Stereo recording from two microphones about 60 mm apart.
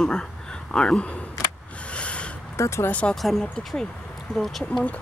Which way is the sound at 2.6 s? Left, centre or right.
Left.